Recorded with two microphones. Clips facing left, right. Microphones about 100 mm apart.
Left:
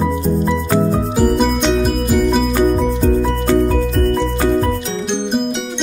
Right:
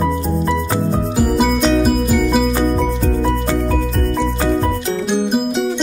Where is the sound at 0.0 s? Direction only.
Centre (ahead or behind).